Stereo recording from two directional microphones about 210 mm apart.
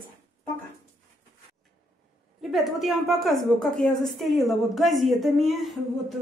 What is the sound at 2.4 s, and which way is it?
A woman's voice, centre (ahead or behind).